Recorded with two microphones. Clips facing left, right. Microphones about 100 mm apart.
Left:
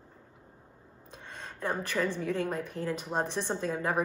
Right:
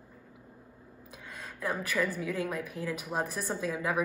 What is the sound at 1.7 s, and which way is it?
A woman's voice, 30° left (ahead or behind).